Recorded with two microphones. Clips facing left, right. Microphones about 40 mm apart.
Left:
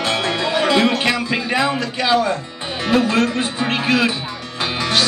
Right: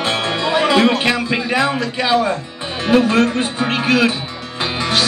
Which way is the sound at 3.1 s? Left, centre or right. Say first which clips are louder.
Right 2 dB; right.